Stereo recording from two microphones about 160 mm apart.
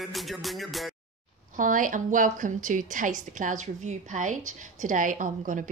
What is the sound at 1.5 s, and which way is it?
A woman's voice, 55° right (ahead or behind).